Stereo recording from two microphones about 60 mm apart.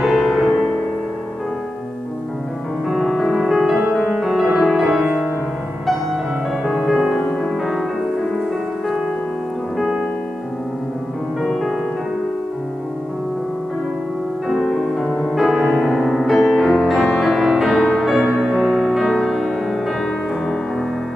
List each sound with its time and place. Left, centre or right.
0.0 s music: centre
2.9 s music: centre
5.0 s music: right
6.6 s music: centre
11.4 s music: centre
14.5 s music: centre
18.2 s music: centre